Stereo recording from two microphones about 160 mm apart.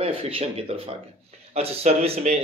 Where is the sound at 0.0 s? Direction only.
35° right (ahead or behind).